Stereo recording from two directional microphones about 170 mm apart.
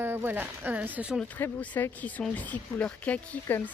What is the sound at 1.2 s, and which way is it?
Speech, 10° left (ahead or behind).